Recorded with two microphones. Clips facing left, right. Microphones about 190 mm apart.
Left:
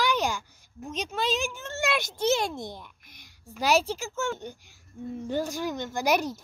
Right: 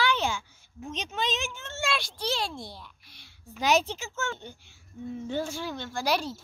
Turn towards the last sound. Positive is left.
turn(degrees=20)  # may be behind; listen again after turning